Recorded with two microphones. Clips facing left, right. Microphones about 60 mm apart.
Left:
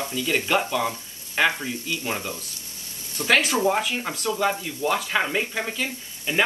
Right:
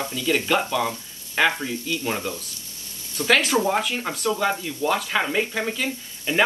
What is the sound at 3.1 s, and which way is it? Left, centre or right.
Speech, centre.